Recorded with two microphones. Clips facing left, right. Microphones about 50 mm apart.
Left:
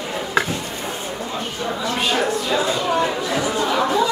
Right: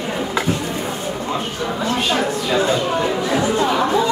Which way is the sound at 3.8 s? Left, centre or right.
Centre.